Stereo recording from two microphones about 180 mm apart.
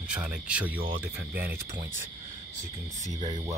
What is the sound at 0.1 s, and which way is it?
Speech, 5° right (ahead or behind).